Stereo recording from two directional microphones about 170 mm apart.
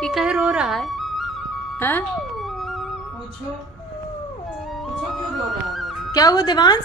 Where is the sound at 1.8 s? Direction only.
10° left (ahead or behind).